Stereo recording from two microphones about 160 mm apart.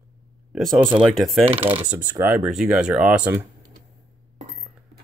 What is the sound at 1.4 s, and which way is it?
Speech, 35° right (ahead or behind).